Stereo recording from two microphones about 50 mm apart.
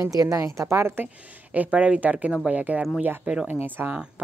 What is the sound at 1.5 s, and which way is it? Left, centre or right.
A woman's voice, right.